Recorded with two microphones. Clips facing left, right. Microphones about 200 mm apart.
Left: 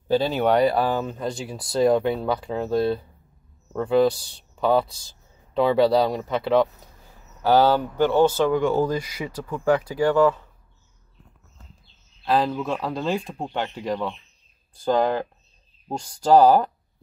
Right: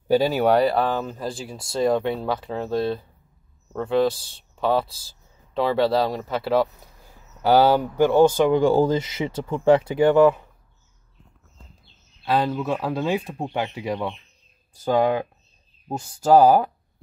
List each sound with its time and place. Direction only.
0.1 s speech: 10° right (ahead or behind)
8.5 s speech: 30° right (ahead or behind)
12.3 s speech: centre (ahead or behind)